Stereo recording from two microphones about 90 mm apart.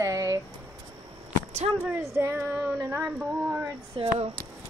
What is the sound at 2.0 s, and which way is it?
Child singing, 30° right (ahead or behind).